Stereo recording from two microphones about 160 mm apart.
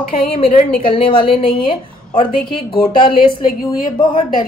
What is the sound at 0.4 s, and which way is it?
Speech, 35° left (ahead or behind).